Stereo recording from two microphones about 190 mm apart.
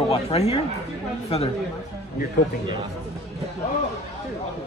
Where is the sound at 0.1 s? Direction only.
30° left (ahead or behind).